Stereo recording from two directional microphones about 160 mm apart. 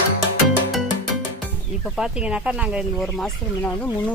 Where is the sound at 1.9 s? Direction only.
5° right (ahead or behind).